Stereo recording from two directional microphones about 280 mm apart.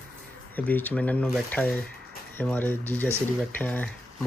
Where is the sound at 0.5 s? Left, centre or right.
Centre.